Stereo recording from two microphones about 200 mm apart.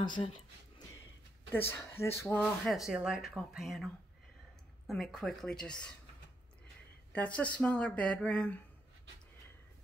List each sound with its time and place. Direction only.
0.0 s a sound: 25° left (ahead or behind)
1.7 s speech: 10° left (ahead or behind)
7.1 s speech: 5° left (ahead or behind)